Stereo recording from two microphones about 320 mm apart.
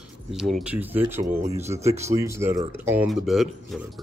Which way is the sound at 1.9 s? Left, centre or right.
Right.